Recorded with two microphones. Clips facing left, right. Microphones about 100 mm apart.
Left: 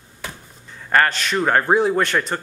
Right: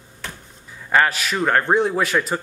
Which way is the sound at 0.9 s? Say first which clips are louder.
Left 1 dB; 5° right (ahead or behind).